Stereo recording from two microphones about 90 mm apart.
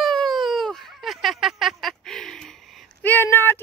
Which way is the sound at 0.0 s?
5° left (ahead or behind).